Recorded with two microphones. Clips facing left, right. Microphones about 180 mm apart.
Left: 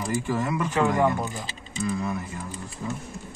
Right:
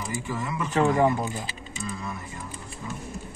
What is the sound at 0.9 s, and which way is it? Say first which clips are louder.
Speech: right 1 dB; 10° right (ahead or behind).